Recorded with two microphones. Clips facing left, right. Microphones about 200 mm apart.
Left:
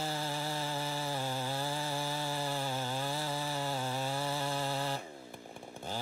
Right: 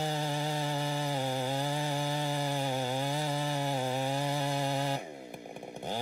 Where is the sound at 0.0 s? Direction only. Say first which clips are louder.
Right 4 dB; 15° right (ahead or behind).